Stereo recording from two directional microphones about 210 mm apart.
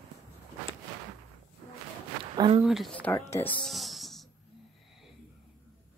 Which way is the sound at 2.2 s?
25° right (ahead or behind).